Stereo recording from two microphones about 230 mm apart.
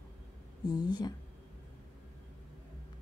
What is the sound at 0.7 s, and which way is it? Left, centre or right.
Speech, centre.